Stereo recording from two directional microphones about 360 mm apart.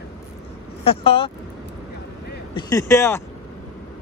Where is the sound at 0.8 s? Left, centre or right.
Centre.